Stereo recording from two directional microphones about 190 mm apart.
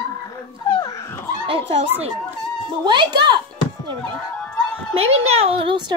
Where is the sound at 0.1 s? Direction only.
20° left (ahead or behind).